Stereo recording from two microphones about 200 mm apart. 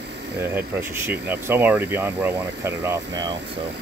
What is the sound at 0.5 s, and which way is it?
Speech, 10° right (ahead or behind).